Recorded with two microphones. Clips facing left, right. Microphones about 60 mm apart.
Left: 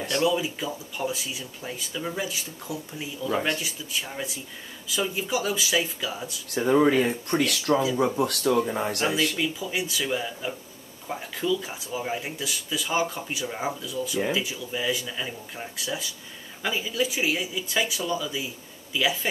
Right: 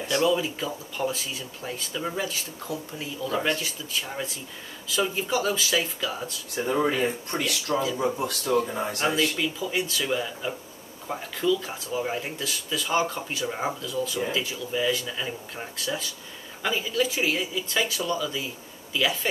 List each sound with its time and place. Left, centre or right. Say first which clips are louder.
0.1 s speech: right 1 dB; centre
5.3 s speech: left 1 dB; centre
6.5 s speech: left 5 dB; left
9.0 s speech: right 2 dB; centre
10.1 s speech: right 1 dB; centre
11.1 s speech: right 2 dB; centre